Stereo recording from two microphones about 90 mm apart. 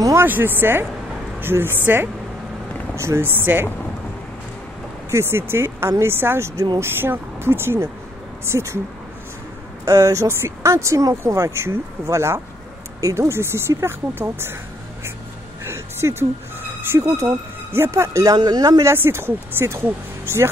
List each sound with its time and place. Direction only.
0.0 s speech: 30° right (ahead or behind)
3.0 s speech: 30° right (ahead or behind)
5.1 s speech: 25° right (ahead or behind)
9.8 s speech: 35° right (ahead or behind)
15.6 s a sound: 30° right (ahead or behind)
16.8 s speech: 30° right (ahead or behind)
19.0 s speech: 25° right (ahead or behind)